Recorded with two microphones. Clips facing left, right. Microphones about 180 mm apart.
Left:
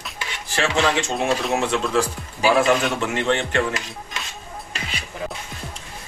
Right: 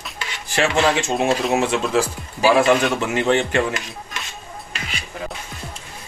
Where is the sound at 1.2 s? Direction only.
5° right (ahead or behind).